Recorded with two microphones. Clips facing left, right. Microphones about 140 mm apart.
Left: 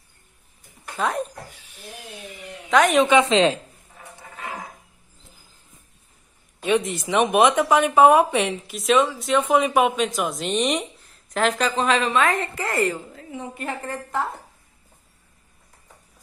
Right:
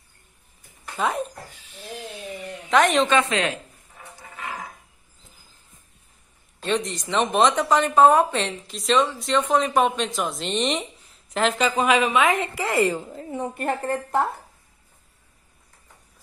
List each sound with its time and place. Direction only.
0.9 s a woman's voice: centre (ahead or behind)
2.7 s a woman's voice: centre (ahead or behind)
3.1 s a woman's voice: 20° left (ahead or behind)
6.6 s a woman's voice: 5° left (ahead or behind); by 13.0 s 10° right (ahead or behind)
13.6 s a woman's voice: 50° right (ahead or behind)